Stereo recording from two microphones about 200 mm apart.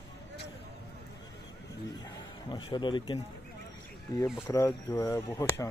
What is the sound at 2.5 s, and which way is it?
Speech, 25° left (ahead or behind).